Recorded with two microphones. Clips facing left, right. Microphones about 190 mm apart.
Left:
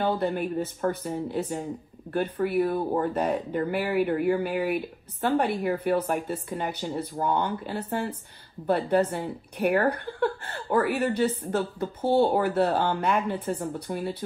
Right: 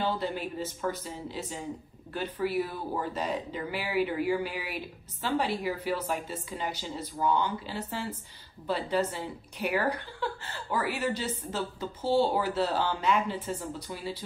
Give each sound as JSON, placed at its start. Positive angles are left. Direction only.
{"t": 0.0, "sound": "speech", "side_deg": 55}